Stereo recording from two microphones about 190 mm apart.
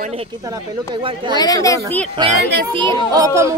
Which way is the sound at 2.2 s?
25° right (ahead or behind).